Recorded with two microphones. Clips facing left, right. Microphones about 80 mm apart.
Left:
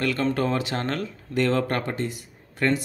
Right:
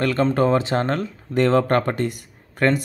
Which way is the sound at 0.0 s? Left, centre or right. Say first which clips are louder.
Right 5 dB; right.